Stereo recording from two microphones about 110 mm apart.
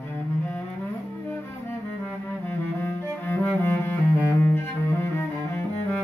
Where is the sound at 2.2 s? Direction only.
20° left (ahead or behind).